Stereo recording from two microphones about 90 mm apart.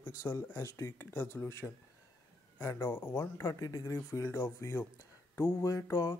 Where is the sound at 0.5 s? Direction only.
30° left (ahead or behind).